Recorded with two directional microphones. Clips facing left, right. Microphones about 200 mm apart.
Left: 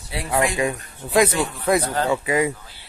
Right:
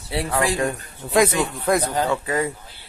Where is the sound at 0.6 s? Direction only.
5° left (ahead or behind).